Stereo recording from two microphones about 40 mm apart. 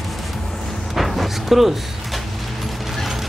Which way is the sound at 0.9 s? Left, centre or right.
Centre.